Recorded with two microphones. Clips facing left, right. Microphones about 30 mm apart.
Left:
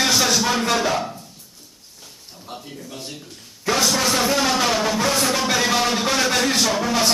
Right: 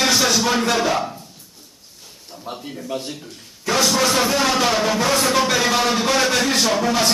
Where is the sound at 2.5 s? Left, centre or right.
Right.